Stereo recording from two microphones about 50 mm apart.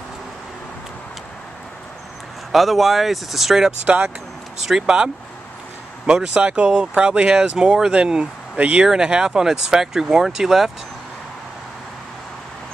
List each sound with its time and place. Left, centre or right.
2.5 s speech: centre
3.8 s speech: right
4.6 s speech: centre
6.3 s speech: right; by 10.7 s centre